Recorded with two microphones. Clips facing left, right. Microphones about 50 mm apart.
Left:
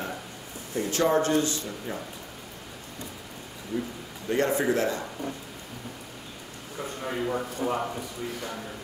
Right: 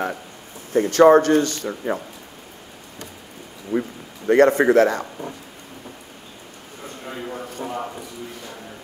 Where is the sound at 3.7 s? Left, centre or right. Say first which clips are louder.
Right 8 dB; right.